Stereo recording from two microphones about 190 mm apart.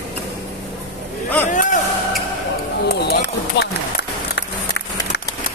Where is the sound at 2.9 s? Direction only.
60° left (ahead or behind).